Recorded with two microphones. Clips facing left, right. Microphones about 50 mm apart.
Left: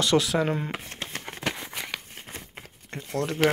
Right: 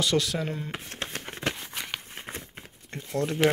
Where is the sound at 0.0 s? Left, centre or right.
Centre.